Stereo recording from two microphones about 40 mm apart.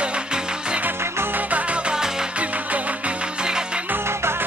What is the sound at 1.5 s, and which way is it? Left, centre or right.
Music, right.